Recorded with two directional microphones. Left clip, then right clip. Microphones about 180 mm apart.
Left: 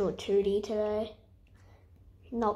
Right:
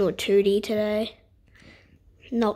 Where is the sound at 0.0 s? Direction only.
45° right (ahead or behind).